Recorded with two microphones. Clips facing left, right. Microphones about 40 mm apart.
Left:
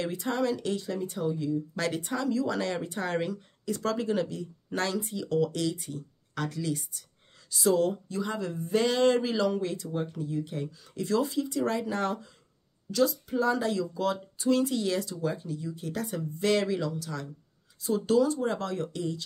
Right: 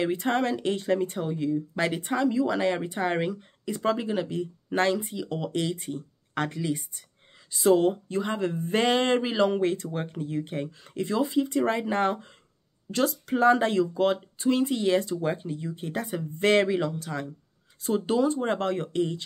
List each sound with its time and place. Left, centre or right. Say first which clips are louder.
0.2 s speech: right 3 dB; right
0.6 s speech: right 3 dB; right
0.8 s speech: right 5 dB; right
1.8 s speech: right 7 dB; right
4.3 s speech: right 6 dB; right
11.1 s speech: right 2 dB; right
12.9 s speech: even; right
16.3 s speech: right 5 dB; right